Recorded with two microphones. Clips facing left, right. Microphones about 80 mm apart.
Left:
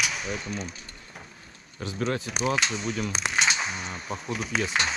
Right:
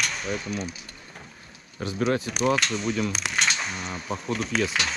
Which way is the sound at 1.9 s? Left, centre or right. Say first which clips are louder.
Right 4 dB; right.